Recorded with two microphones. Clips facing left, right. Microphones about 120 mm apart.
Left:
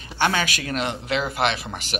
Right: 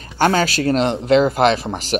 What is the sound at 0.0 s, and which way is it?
Speech, 40° right (ahead or behind).